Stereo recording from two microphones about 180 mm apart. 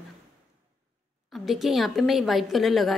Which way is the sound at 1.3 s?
Centre (ahead or behind).